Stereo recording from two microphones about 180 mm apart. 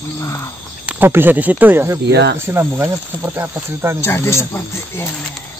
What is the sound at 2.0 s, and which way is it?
Speech, 75° right (ahead or behind).